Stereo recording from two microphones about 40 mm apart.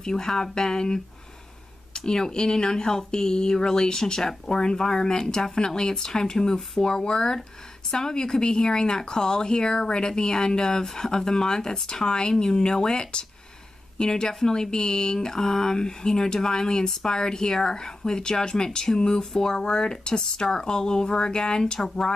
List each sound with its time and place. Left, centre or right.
0.0 s speech: centre